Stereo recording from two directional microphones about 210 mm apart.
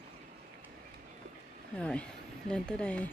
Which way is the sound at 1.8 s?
5° left (ahead or behind).